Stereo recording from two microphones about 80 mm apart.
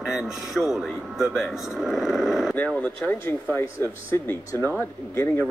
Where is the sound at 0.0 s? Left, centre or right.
Centre.